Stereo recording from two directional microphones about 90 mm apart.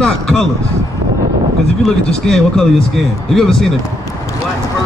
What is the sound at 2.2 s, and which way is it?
Speech, 5° left (ahead or behind).